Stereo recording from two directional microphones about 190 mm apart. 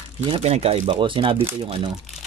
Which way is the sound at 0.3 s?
35° right (ahead or behind).